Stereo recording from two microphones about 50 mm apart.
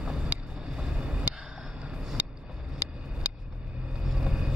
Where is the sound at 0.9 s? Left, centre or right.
Right.